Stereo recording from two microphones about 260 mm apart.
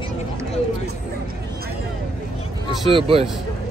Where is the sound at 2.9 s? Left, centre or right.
Right.